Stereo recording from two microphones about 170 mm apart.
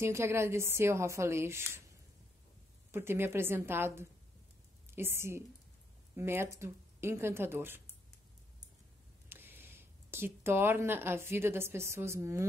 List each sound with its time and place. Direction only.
0.0 s a woman's voice: 15° right (ahead or behind)
2.9 s a woman's voice: 15° right (ahead or behind)
9.3 s speech: 10° right (ahead or behind)